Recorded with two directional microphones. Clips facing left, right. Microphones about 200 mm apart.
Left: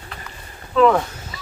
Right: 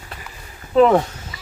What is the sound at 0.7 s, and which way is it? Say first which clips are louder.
Speech: right 2 dB; 30° right (ahead or behind).